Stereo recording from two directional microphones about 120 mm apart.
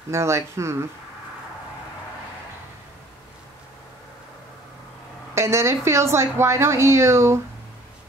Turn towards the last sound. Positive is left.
turn(degrees=-25)  # may be behind; listen again after turning